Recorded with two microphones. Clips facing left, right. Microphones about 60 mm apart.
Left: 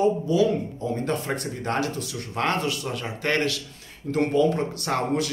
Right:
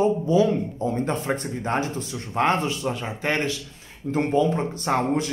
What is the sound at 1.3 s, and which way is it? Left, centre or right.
A man's voice, centre.